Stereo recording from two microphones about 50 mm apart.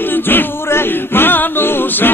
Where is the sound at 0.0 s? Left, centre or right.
Left.